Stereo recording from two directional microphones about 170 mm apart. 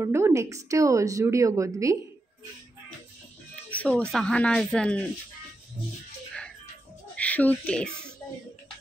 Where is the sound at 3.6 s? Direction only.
10° left (ahead or behind).